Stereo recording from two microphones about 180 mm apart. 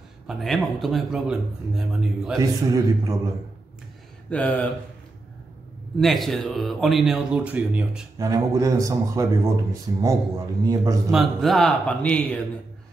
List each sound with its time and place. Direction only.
0.3 s speech: centre (ahead or behind)
2.3 s a man's voice: 20° right (ahead or behind)
4.3 s speech: 5° left (ahead or behind)
5.9 s speech: centre (ahead or behind)
8.2 s speech: 20° right (ahead or behind)
11.1 s speech: centre (ahead or behind)